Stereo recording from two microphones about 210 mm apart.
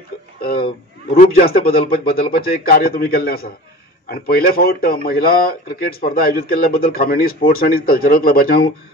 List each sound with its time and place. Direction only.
1.1 s speech: 40° left (ahead or behind)